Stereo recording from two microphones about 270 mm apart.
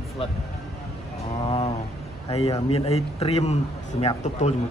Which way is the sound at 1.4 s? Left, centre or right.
Left.